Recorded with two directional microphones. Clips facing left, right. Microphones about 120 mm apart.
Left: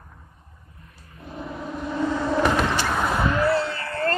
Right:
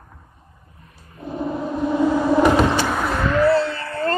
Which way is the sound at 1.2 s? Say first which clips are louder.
Right 8 dB; 30° right (ahead or behind).